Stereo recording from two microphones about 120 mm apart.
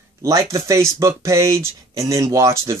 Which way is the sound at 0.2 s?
25° right (ahead or behind).